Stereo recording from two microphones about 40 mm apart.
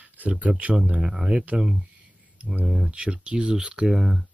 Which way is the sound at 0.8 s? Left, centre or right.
Right.